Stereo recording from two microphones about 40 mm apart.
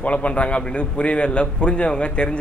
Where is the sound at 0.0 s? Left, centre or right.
Left.